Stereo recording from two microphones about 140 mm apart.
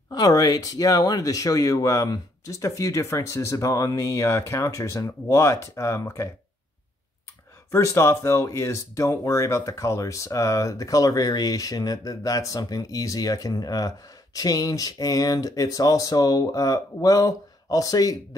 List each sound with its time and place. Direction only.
0.1 s speech: 25° left (ahead or behind)
7.7 s speech: 20° left (ahead or behind)